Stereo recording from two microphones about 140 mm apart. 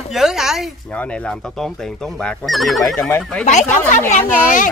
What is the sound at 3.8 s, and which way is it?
Speech, 65° left (ahead or behind).